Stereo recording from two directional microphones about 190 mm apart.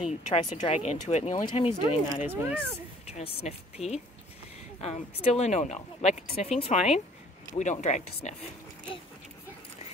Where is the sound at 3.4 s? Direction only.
35° left (ahead or behind).